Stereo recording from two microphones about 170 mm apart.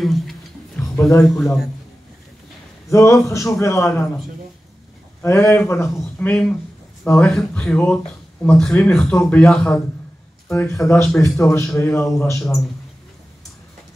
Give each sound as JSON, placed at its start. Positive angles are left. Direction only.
{"t": 0.0, "sound": "music", "side_deg": 0}
{"t": 1.3, "sound": "a man's voice", "side_deg": 0}
{"t": 2.9, "sound": "speech", "side_deg": 15}
{"t": 5.2, "sound": "speech", "side_deg": 15}